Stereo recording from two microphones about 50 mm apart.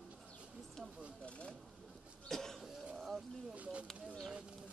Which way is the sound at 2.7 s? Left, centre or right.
Centre.